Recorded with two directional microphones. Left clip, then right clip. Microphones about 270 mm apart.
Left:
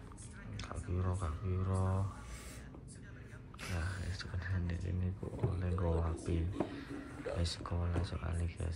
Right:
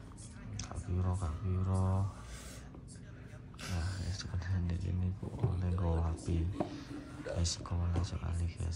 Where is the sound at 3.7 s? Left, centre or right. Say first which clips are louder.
Left 1 dB; centre.